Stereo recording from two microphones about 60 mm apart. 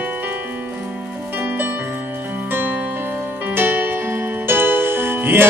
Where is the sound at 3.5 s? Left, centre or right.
Right.